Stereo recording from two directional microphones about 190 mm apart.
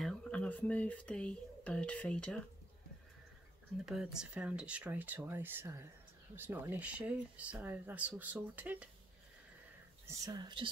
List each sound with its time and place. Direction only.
0.0 s speech: 5° left (ahead or behind)
3.8 s speech: 5° right (ahead or behind)
10.0 s speech: 20° right (ahead or behind)